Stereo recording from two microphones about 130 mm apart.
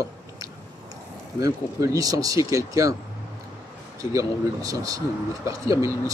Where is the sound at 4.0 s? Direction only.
25° right (ahead or behind).